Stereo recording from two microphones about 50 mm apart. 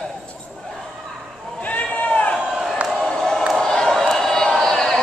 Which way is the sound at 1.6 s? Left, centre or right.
Left.